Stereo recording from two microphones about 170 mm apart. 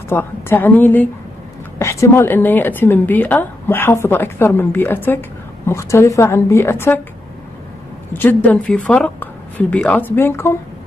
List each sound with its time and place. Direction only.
0.1 s a woman's voice: 15° left (ahead or behind)
8.1 s a woman's voice: 10° left (ahead or behind)